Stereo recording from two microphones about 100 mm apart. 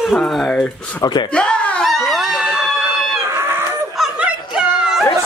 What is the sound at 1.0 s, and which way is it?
Speech, 50° left (ahead or behind).